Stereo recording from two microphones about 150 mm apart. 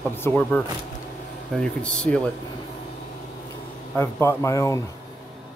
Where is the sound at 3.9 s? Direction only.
15° left (ahead or behind).